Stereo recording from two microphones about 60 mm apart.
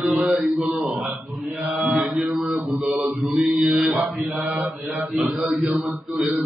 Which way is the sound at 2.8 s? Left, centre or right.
Centre.